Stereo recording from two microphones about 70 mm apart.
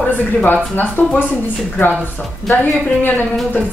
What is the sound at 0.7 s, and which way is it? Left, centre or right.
Speech, left.